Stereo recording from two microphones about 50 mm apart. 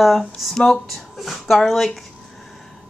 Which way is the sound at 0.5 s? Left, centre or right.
Centre.